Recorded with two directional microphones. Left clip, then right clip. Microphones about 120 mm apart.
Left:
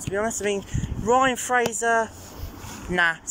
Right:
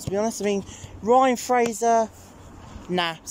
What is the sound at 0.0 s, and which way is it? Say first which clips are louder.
A woman's voice: right 1 dB; 25° right (ahead or behind).